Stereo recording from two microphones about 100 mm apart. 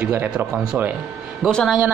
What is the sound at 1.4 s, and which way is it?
Speech, 10° left (ahead or behind).